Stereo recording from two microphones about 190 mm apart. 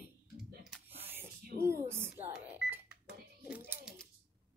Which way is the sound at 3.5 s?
10° right (ahead or behind).